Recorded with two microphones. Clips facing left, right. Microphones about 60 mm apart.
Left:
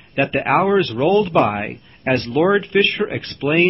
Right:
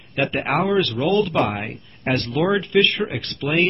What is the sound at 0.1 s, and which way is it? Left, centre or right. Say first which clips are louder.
Speech: left 3 dB; centre.